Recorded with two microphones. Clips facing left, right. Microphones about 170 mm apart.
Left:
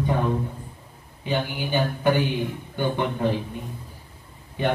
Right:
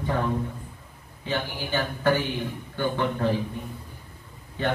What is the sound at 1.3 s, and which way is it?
Speech, 15° left (ahead or behind).